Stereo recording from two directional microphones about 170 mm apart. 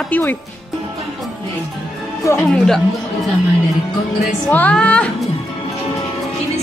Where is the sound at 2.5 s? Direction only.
Centre (ahead or behind).